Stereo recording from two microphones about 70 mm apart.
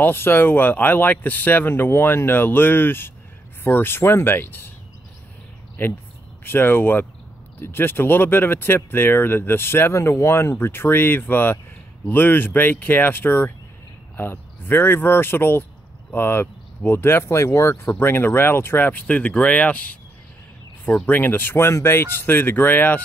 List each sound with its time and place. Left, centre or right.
0.0 s speech: left
5.8 s speech: left